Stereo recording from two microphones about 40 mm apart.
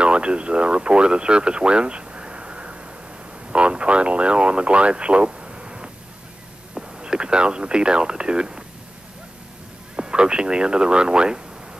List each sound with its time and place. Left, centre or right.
0.0 s speech: right
9.9 s speech: right